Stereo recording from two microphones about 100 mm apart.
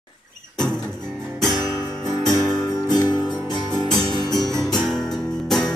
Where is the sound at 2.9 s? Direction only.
45° left (ahead or behind).